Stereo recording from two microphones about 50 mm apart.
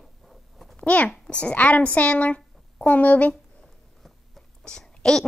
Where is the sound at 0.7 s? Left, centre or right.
Left.